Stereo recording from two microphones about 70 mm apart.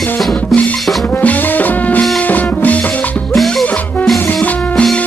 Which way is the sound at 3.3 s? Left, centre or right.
Centre.